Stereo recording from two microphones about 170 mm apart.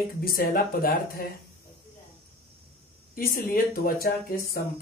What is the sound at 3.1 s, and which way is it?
Speech, 60° left (ahead or behind).